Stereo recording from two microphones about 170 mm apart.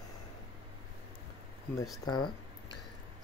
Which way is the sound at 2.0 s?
25° left (ahead or behind).